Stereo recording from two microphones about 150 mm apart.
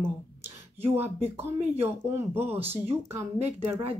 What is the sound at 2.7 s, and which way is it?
Speech, 15° right (ahead or behind).